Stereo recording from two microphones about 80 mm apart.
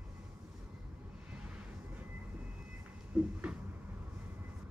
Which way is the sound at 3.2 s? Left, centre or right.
Centre.